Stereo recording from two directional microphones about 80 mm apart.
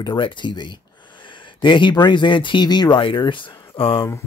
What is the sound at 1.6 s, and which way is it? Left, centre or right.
Speech, left.